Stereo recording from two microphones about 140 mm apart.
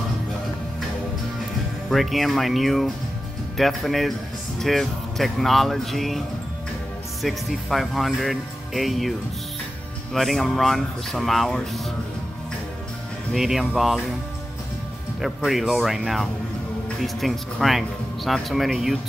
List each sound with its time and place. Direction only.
1.9 s speech: centre (ahead or behind)
10.1 s speech: centre (ahead or behind)
13.3 s speech: centre (ahead or behind)
15.1 s speech: centre (ahead or behind)